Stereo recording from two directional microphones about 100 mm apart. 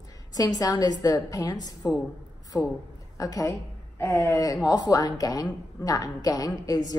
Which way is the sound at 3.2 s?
35° left (ahead or behind).